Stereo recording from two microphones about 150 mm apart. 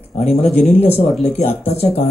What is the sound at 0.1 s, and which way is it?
Speech, 45° left (ahead or behind).